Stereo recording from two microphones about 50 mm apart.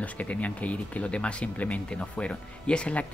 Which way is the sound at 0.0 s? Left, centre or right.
Left.